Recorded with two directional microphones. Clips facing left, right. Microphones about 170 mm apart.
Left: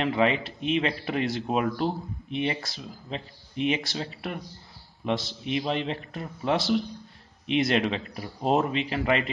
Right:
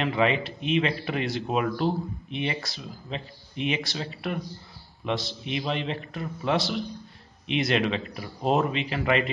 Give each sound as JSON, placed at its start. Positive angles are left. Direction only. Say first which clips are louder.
{"t": 0.0, "sound": "speech", "louder": "even", "side_deg": 35}